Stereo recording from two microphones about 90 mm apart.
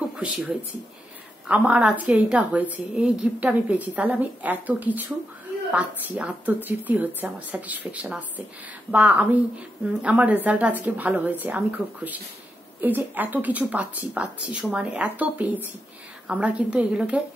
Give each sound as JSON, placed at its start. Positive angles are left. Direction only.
{"t": 0.2, "sound": "a woman's voice", "side_deg": -15}